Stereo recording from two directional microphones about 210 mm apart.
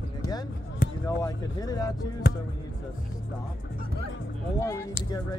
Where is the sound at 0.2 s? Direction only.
20° left (ahead or behind).